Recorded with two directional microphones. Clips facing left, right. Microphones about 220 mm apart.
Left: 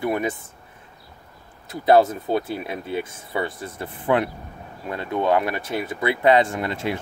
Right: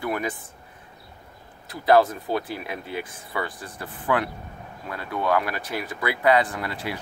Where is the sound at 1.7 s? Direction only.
25° left (ahead or behind).